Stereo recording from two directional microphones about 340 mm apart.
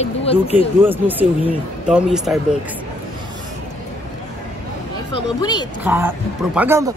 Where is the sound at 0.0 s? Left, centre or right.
Centre.